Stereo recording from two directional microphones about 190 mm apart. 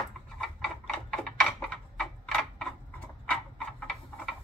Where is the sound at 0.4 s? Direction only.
5° left (ahead or behind).